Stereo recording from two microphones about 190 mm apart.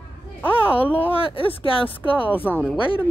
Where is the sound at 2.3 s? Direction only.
10° left (ahead or behind).